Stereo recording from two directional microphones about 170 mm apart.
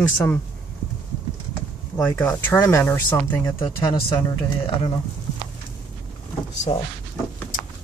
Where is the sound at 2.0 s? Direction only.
10° left (ahead or behind).